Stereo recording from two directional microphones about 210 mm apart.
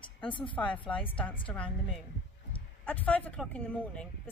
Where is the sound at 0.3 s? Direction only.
25° left (ahead or behind).